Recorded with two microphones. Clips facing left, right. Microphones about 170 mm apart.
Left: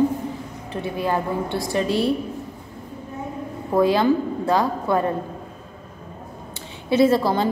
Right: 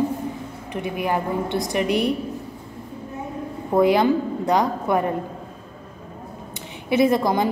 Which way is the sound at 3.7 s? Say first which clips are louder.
Right 1 dB; 20° right (ahead or behind).